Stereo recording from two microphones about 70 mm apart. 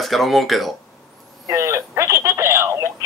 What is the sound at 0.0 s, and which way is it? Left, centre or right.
Speech, centre.